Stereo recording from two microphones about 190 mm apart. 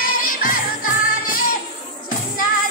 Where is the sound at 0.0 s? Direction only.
45° left (ahead or behind).